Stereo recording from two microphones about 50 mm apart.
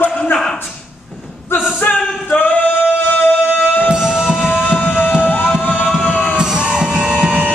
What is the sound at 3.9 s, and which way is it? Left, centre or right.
Music, centre.